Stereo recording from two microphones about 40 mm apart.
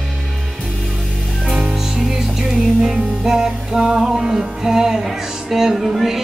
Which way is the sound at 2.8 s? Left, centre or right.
Centre.